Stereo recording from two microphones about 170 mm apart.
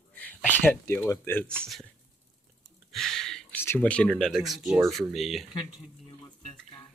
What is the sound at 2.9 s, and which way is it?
Speech, centre (ahead or behind).